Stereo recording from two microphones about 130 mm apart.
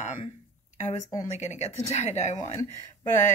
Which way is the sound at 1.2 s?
60° left (ahead or behind).